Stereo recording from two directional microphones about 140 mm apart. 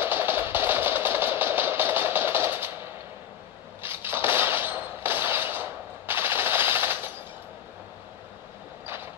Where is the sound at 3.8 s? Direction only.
15° right (ahead or behind).